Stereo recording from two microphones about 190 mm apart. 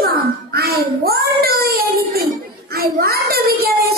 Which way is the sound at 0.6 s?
55° right (ahead or behind).